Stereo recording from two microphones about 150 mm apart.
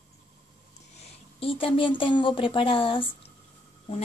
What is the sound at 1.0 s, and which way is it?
A woman's voice, 40° left (ahead or behind).